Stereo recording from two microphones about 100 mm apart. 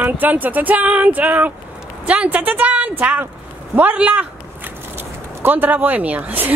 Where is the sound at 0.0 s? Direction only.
15° right (ahead or behind).